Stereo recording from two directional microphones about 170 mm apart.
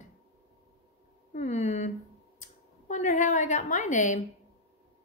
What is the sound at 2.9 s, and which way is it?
Speech, 45° left (ahead or behind).